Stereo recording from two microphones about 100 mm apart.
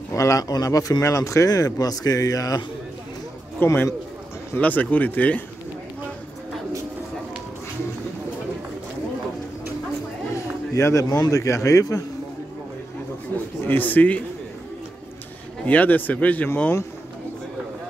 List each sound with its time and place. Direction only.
0.1 s speech: 30° left (ahead or behind)
3.5 s a man's voice: 25° left (ahead or behind)
10.7 s speech: 30° left (ahead or behind)
13.3 s a sound: 20° left (ahead or behind)
13.7 s speech: 20° left (ahead or behind)
15.6 s speech: 15° left (ahead or behind)